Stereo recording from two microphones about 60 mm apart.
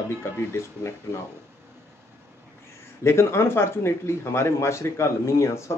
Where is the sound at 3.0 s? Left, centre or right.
Left.